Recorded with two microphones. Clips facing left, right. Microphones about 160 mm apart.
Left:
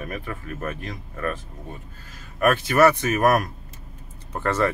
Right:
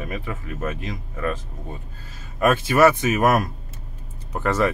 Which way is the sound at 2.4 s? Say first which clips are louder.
Right 1 dB; 20° right (ahead or behind).